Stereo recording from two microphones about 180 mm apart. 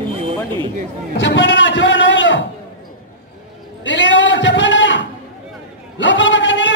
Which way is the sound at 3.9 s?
90° left.